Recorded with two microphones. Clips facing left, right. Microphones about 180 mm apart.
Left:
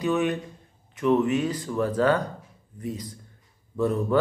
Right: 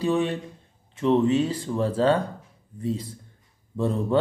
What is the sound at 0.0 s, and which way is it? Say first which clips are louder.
A man's voice: right 1 dB; 30° right (ahead or behind).